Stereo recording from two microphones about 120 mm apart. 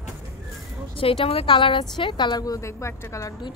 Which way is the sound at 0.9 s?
50° left (ahead or behind).